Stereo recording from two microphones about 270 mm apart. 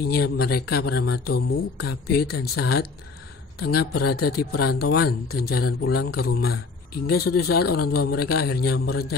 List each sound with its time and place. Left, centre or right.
0.0 s speech: left